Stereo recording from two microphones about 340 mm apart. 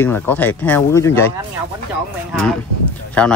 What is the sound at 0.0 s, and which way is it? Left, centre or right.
Speech, centre.